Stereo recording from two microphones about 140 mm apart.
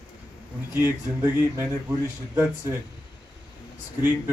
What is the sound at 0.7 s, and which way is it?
Speech, 15° right (ahead or behind).